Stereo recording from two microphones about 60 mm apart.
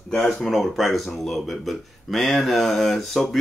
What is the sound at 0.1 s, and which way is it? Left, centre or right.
Speech, centre.